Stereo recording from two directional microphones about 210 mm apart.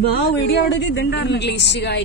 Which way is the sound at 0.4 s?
55° left (ahead or behind).